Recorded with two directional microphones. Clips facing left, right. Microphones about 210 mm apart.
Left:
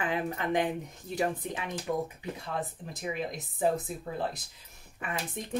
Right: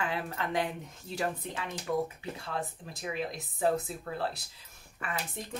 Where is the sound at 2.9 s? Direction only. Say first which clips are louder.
Even; 15° left (ahead or behind).